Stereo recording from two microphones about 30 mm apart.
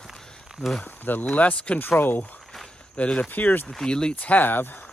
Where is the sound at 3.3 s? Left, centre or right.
Left.